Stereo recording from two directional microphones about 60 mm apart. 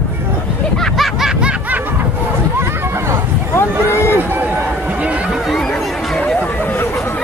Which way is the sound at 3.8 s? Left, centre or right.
Left.